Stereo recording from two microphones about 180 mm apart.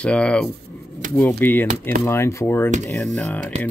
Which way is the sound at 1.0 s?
45° right (ahead or behind).